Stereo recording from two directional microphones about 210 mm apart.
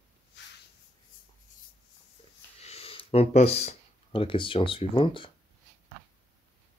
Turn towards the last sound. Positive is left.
turn(degrees=25)  # may be behind; listen again after turning